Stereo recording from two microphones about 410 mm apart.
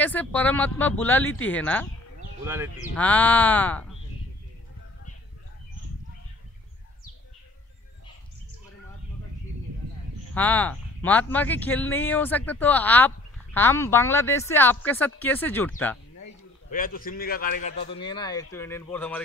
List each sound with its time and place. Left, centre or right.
0.0 s speech: centre
10.3 s speech: centre
16.7 s a man's voice: left; by 19.2 s centre